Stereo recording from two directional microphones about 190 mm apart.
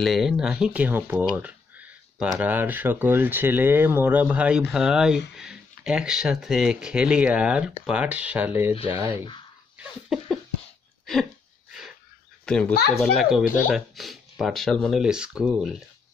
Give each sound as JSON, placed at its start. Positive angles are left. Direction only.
{"t": 0.0, "sound": "speech", "side_deg": 0}
{"t": 9.1, "sound": "speech", "side_deg": 25}
{"t": 9.8, "sound": "a sound", "side_deg": 0}
{"t": 12.4, "sound": "a child's voice", "side_deg": 5}